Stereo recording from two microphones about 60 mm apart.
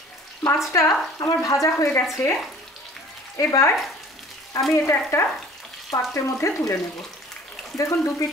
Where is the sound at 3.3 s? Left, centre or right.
Left.